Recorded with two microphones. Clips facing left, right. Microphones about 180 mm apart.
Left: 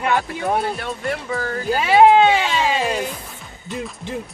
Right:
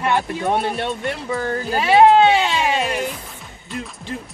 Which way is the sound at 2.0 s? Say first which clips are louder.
Even; 15° left (ahead or behind).